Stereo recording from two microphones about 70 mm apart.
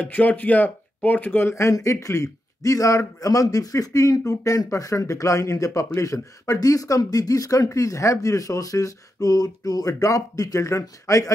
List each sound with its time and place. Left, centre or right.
0.0 s speech: left
1.5 s a man's voice: left